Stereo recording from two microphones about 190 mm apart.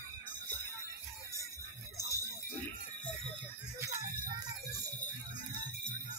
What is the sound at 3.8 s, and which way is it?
Music, 20° right (ahead or behind).